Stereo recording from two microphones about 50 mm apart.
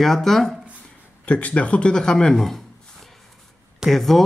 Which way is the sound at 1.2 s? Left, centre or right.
Left.